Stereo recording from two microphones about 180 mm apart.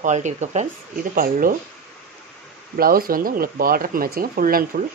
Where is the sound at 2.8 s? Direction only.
55° right (ahead or behind).